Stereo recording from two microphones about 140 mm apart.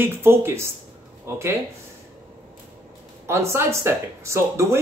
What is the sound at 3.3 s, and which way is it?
A man's voice, 20° right (ahead or behind).